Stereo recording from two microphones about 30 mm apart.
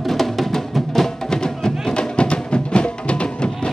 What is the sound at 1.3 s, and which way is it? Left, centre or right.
Music, left.